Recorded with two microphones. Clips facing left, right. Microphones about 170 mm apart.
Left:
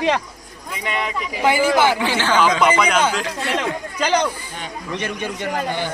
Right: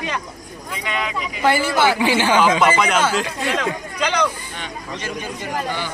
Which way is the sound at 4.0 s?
35° left (ahead or behind).